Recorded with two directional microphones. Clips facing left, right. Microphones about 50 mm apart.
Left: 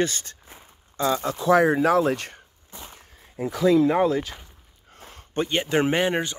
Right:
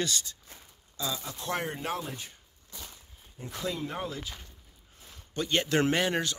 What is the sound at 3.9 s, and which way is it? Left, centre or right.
Speech, left.